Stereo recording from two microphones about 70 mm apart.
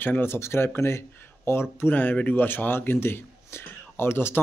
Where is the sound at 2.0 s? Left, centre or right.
Left.